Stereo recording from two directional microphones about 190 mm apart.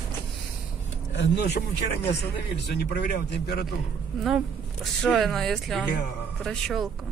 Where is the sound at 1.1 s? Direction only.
65° left (ahead or behind).